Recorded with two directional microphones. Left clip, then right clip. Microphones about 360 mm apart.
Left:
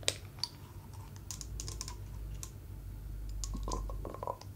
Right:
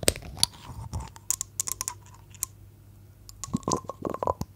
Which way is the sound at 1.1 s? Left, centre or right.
Right.